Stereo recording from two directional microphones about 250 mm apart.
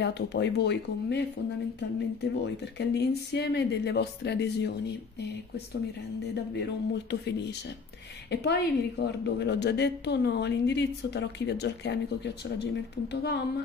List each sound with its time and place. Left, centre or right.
0.0 s a woman's voice: left
2.4 s a woman's voice: left
6.5 s a woman's voice: left
13.1 s speech: left